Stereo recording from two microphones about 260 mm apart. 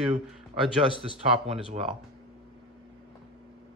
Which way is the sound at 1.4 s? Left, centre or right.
Right.